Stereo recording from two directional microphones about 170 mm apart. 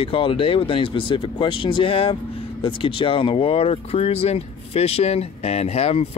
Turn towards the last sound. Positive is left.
turn(degrees=40)  # may be behind; listen again after turning